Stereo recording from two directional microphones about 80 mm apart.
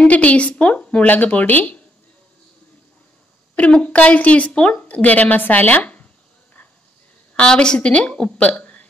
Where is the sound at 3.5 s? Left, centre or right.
Centre.